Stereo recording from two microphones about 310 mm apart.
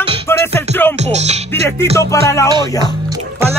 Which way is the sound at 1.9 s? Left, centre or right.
Centre.